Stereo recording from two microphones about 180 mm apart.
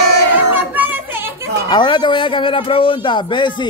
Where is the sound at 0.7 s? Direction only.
10° right (ahead or behind).